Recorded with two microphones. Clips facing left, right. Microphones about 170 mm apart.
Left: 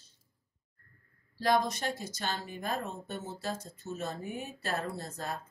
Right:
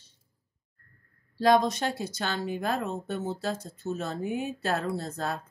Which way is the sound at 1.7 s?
70° right (ahead or behind).